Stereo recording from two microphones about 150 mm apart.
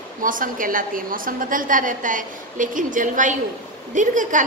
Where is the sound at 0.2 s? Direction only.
65° right (ahead or behind).